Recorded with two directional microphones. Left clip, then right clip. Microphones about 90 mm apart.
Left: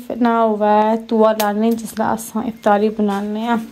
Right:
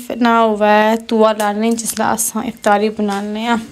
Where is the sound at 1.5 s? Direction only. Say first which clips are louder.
Right 1 dB; 30° left (ahead or behind).